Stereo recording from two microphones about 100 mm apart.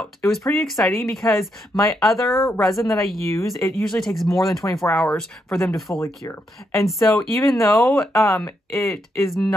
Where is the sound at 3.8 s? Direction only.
Centre (ahead or behind).